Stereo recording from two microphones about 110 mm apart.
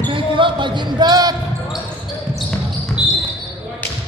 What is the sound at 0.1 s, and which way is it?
Basketball bounce, 50° right (ahead or behind).